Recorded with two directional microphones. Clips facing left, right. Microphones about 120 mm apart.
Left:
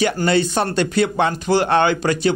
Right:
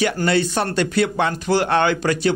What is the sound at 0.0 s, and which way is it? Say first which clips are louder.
A man's voice: left 1 dB; 25° left (ahead or behind).